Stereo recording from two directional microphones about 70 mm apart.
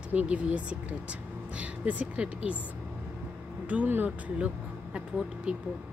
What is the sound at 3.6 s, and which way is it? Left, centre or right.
Speech, right.